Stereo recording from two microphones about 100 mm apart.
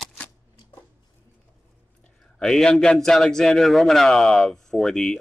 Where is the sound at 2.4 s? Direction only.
5° left (ahead or behind).